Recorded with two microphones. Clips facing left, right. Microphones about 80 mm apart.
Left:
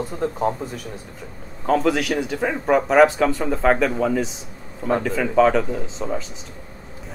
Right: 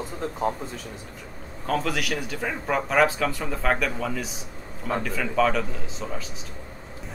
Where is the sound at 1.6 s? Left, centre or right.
Left.